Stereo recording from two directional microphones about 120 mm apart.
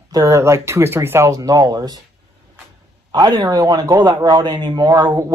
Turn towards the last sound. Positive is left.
turn(degrees=-30)  # may be behind; listen again after turning